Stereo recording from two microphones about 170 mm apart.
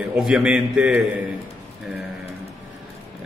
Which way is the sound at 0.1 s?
5° right (ahead or behind).